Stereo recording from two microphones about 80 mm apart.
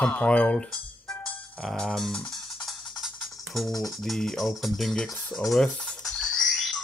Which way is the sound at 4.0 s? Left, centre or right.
Centre.